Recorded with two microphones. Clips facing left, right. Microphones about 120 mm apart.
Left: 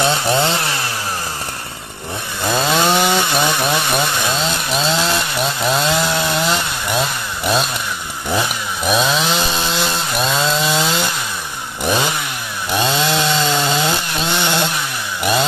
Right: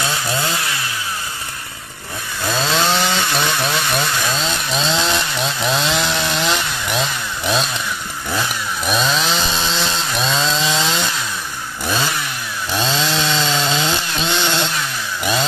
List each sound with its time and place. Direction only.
0.0 s chainsaw: 25° left (ahead or behind)
2.5 s chainsaw: 10° left (ahead or behind)
8.8 s chainsaw: 5° left (ahead or behind)